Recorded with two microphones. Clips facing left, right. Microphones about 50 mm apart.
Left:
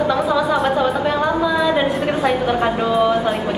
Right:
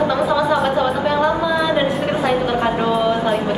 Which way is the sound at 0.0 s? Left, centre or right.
Centre.